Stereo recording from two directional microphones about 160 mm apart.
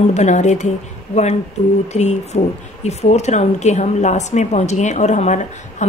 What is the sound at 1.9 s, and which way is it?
A woman's voice, 45° left (ahead or behind).